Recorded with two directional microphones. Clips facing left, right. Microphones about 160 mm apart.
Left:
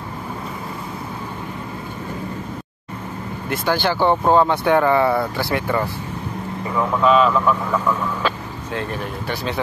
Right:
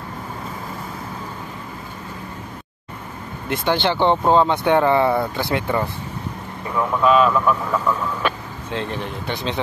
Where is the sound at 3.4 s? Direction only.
20° right (ahead or behind).